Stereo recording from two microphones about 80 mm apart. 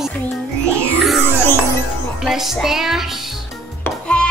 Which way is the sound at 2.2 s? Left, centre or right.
Centre.